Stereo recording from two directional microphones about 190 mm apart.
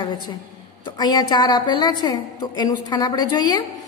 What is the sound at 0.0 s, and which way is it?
A woman's voice, 20° left (ahead or behind).